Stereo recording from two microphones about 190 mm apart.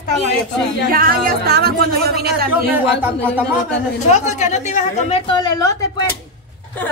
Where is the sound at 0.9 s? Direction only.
50° right (ahead or behind).